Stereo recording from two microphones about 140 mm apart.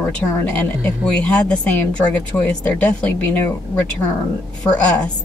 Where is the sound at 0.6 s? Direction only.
10° left (ahead or behind).